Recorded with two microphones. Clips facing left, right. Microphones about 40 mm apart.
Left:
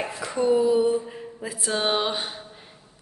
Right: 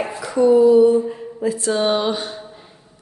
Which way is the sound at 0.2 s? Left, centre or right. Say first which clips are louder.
Right 8 dB; left.